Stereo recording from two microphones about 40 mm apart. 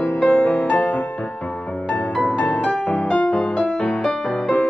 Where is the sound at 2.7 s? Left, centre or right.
Left.